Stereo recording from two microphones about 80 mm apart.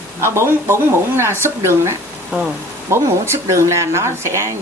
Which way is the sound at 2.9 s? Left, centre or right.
Right.